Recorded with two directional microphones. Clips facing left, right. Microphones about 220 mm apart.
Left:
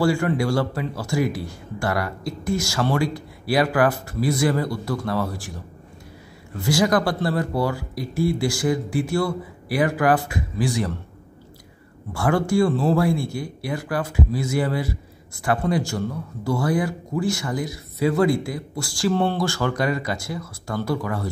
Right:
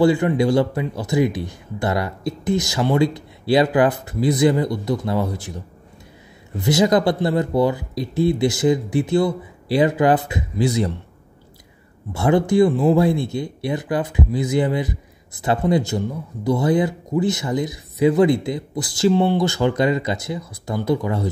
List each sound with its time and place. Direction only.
0.0 s speech: 20° right (ahead or behind)
6.5 s speech: 20° right (ahead or behind)
12.1 s speech: 20° right (ahead or behind)